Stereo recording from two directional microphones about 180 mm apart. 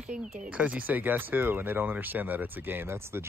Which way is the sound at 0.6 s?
10° right (ahead or behind).